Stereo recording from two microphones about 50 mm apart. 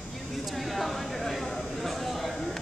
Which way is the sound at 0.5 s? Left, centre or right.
Centre.